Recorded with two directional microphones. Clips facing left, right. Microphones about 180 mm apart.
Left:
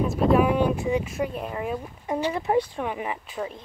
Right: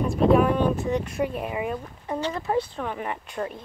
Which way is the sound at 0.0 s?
Centre (ahead or behind).